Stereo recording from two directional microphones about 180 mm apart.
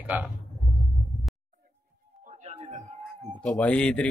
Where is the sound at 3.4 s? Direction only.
5° left (ahead or behind).